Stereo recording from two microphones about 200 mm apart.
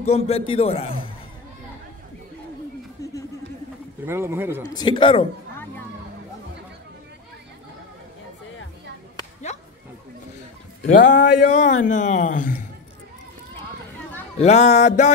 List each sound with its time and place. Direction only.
0.0 s a man's voice: 30° left (ahead or behind)
4.0 s speech: 10° right (ahead or behind)
4.6 s speech: 20° left (ahead or behind)
10.9 s a man's voice: 40° left (ahead or behind)
14.4 s a man's voice: 35° left (ahead or behind)